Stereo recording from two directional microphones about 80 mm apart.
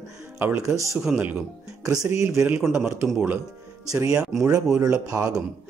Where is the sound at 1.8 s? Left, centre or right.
Right.